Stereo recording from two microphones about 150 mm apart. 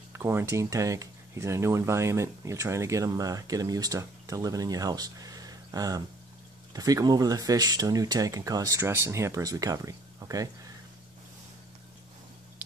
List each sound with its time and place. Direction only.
0.1 s speech: 15° right (ahead or behind)